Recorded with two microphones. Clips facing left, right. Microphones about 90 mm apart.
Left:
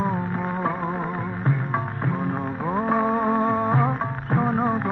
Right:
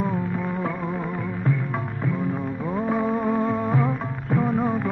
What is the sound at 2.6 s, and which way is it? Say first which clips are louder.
Music: left 3 dB; 35° left (ahead or behind).